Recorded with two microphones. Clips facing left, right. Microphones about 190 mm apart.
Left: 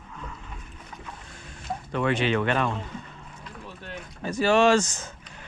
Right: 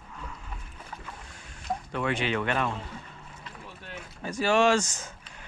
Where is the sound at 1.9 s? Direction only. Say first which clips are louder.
Left 5 dB; 10° right (ahead or behind).